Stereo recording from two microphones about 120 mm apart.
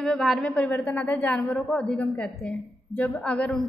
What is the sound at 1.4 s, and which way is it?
A woman's voice, centre (ahead or behind).